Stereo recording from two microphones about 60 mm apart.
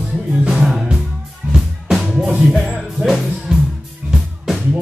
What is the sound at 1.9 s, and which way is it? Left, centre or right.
Music, centre.